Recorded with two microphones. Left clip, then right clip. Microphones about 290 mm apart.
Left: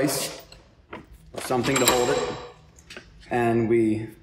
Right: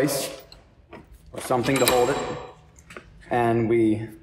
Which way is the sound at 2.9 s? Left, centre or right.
Centre.